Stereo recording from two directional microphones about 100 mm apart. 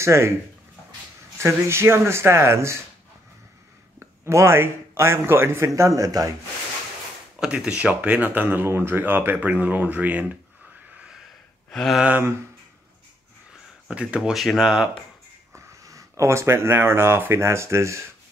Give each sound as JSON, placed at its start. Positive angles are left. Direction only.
{"t": 0.0, "sound": "speech", "side_deg": -25}
{"t": 1.4, "sound": "speech", "side_deg": -25}
{"t": 4.0, "sound": "a man's voice", "side_deg": -30}
{"t": 7.3, "sound": "speech", "side_deg": -10}
{"t": 11.7, "sound": "a sound", "side_deg": 5}
{"t": 12.0, "sound": "speech", "side_deg": -20}
{"t": 13.8, "sound": "speech", "side_deg": -10}
{"t": 15.5, "sound": "speech", "side_deg": -35}